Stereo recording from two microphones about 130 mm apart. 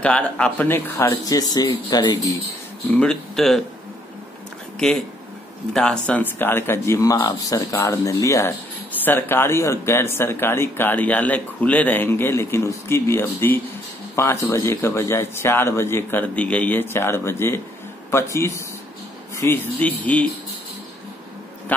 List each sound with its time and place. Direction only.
0.0 s speech: 10° left (ahead or behind)
1.1 s speech: 30° left (ahead or behind)
2.9 s speech: 5° left (ahead or behind)
5.7 s a man's voice: 5° left (ahead or behind)